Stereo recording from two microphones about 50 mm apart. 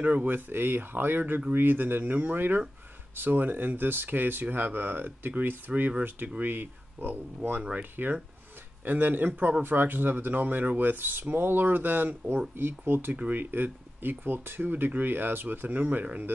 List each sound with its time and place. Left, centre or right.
0.0 s speech: right